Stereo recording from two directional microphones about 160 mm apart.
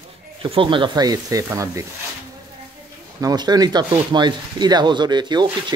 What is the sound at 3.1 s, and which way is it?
Speech, 25° right (ahead or behind).